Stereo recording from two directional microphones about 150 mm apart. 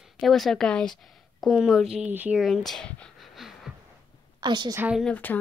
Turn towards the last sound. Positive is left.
turn(degrees=10)  # may be behind; listen again after turning